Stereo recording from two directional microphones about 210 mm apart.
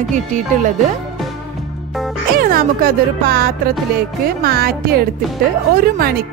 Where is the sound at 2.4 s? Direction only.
45° right (ahead or behind).